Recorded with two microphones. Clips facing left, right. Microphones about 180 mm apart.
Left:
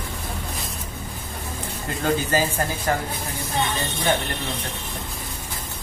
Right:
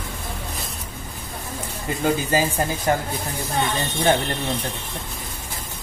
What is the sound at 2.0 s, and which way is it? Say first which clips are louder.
A man's voice: right 1 dB; 10° right (ahead or behind).